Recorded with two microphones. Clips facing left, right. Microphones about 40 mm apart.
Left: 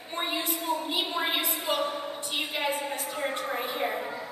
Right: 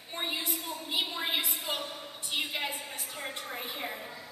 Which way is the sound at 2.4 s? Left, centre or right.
Centre.